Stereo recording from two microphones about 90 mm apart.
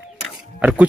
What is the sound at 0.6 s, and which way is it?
Speech, 15° right (ahead or behind).